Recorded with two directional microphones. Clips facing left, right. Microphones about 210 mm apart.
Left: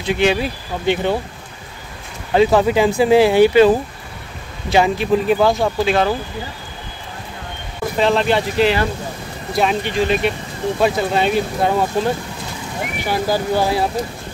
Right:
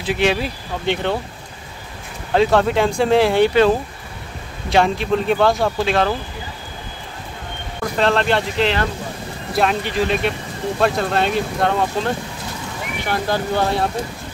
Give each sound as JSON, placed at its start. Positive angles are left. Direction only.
{"t": 0.0, "sound": "speech", "side_deg": 0}
{"t": 2.3, "sound": "speech", "side_deg": 5}
{"t": 7.8, "sound": "speech", "side_deg": 5}